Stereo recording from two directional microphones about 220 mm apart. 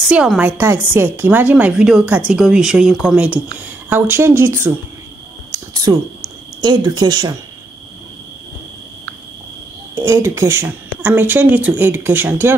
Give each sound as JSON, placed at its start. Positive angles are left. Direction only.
{"t": 0.1, "sound": "a woman's voice", "side_deg": -5}
{"t": 5.5, "sound": "a sound", "side_deg": -15}
{"t": 6.6, "sound": "speech", "side_deg": -20}
{"t": 9.9, "sound": "speech", "side_deg": -15}